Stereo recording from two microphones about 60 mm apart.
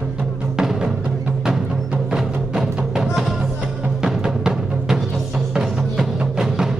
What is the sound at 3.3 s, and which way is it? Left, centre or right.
Music, centre.